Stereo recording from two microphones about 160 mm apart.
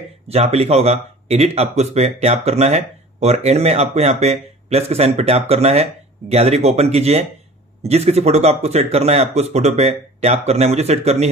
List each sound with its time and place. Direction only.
0.3 s speech: 40° right (ahead or behind)